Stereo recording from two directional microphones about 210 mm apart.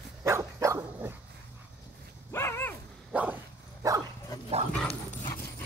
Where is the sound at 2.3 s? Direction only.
10° left (ahead or behind).